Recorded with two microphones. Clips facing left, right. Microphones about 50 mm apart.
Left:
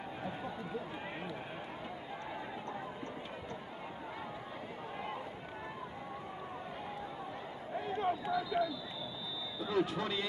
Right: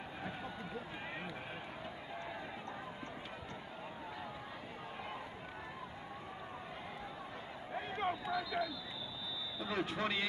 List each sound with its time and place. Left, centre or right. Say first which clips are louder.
7.8 s a sound: left 3 dB; right
8.3 s speech: left 3 dB; centre
9.7 s a man's voice: left 3 dB; right